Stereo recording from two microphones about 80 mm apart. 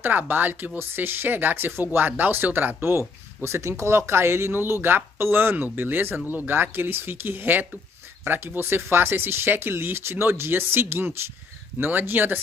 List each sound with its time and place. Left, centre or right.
0.3 s speech: right